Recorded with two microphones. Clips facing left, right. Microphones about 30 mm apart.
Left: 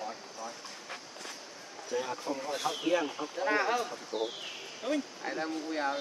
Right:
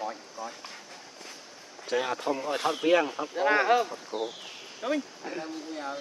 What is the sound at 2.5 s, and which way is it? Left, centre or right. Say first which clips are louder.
Speech: right 4 dB; right.